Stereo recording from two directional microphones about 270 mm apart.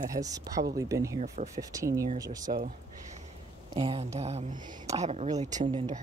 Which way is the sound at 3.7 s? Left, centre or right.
Centre.